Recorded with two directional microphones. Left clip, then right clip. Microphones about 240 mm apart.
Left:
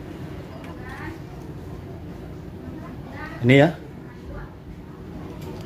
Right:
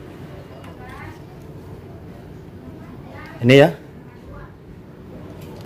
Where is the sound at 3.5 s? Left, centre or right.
Right.